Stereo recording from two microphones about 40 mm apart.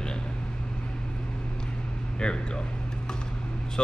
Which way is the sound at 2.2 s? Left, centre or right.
Left.